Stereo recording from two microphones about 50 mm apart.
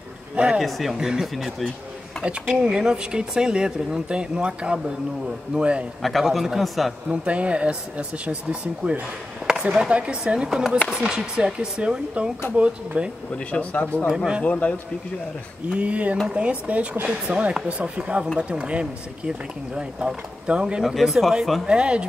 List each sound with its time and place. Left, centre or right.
0.6 s a man's voice: centre
0.9 s a man's voice: centre
2.2 s speech: right
6.0 s a man's voice: centre
7.1 s speech: right
13.5 s speech: left
14.0 s speech: centre
14.4 s speech: left
15.7 s speech: right
20.8 s speech: centre
21.6 s speech: centre